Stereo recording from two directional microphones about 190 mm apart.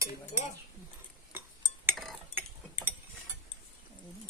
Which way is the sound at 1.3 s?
10° right (ahead or behind).